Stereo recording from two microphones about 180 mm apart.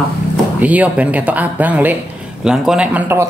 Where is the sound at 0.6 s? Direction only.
10° right (ahead or behind).